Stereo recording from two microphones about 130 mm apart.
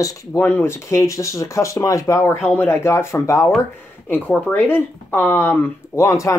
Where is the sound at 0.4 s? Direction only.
15° left (ahead or behind).